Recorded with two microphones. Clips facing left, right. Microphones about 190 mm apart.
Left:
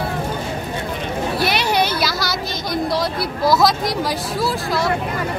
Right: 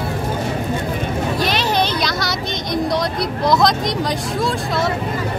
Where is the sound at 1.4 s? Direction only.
10° left (ahead or behind).